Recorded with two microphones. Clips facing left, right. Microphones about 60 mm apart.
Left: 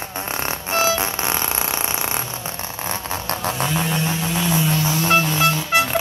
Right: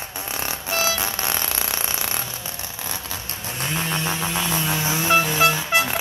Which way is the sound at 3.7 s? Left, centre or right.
Centre.